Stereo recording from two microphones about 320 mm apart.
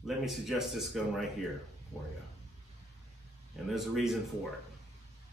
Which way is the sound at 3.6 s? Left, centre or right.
Centre.